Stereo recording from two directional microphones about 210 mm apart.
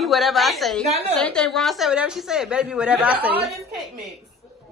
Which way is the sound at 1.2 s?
5° left (ahead or behind).